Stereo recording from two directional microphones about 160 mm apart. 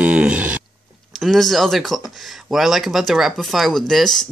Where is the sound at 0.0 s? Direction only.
10° right (ahead or behind).